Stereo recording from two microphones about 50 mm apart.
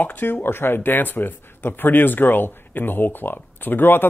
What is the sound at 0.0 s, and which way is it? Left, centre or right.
Speech, left.